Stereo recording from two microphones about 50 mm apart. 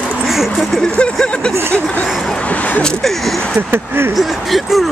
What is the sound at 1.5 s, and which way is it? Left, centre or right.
Speech, right.